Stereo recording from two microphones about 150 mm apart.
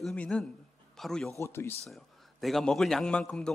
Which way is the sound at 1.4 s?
15° left (ahead or behind).